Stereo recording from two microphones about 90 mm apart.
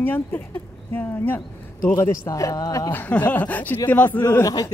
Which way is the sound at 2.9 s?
20° left (ahead or behind).